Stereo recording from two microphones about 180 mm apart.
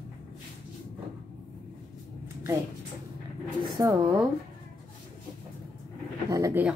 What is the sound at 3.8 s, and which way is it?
Speech, 20° right (ahead or behind).